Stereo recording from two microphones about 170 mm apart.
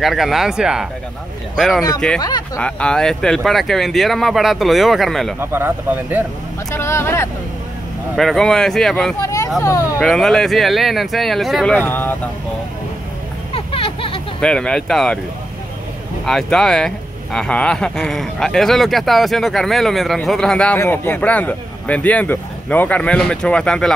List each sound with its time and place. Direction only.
0.0 s speech: centre (ahead or behind)
2.1 s speech: 20° left (ahead or behind)
2.6 s speech: 5° left (ahead or behind)
5.4 s speech: 15° right (ahead or behind)
6.7 s a man's voice: 15° left (ahead or behind)
8.2 s speech: centre (ahead or behind)
9.2 s vehicle: 20° left (ahead or behind)
9.9 s speech: centre (ahead or behind)
13.6 s a sound: 35° left (ahead or behind)
14.4 s speech: 5° left (ahead or behind)
16.3 s a man's voice: 5° left (ahead or behind)